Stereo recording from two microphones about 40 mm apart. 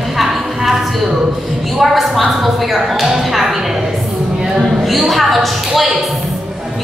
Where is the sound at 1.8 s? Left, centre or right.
Centre.